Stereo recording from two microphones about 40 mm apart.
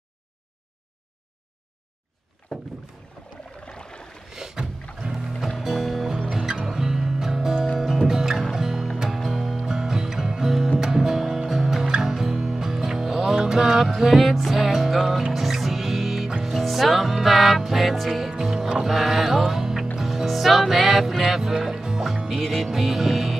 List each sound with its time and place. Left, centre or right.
2.4 s rowboat: left
3.2 s boat: left
3.6 s a sound: left
4.3 s rowboat: centre
5.0 s music: right
5.6 s music: centre
18.3 s music: centre